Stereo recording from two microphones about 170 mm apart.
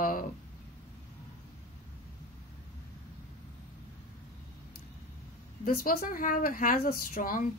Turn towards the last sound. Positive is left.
turn(degrees=55)  # may be behind; listen again after turning